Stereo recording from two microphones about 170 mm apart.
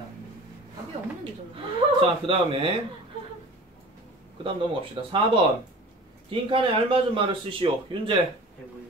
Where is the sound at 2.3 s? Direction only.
30° right (ahead or behind).